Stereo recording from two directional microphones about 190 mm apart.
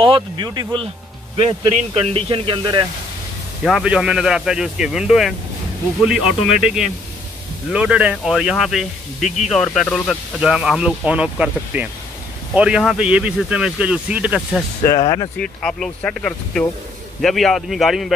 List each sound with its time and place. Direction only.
0.0 s speech: 25° right (ahead or behind)
3.6 s speech: 5° right (ahead or behind)
15.0 s speech: 30° left (ahead or behind)
15.3 s speech: 5° left (ahead or behind)